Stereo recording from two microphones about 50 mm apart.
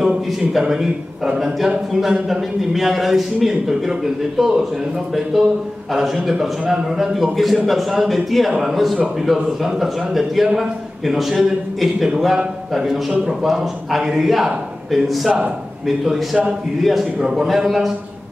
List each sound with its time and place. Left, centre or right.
0.0 s a man's voice: centre
16.8 s a man's voice: centre
17.2 s a man's voice: centre